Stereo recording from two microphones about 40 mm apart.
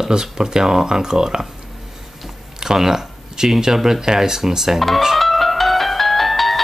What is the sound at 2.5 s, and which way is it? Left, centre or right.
Speech, centre.